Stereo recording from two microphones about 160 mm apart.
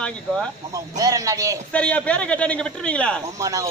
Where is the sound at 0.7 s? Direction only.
20° right (ahead or behind).